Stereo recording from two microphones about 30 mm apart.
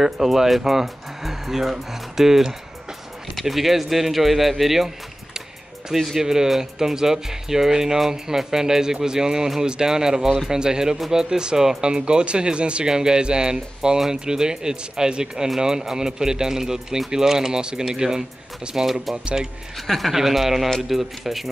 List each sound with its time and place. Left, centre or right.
0.0 s speech: centre
6.1 s speech: centre; by 12.8 s right
12.8 s speech: right
13.8 s speech: centre
19.9 s speech: centre
20.2 s speech: centre